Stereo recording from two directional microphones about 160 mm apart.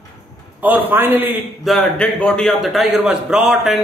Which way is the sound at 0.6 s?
10° right (ahead or behind).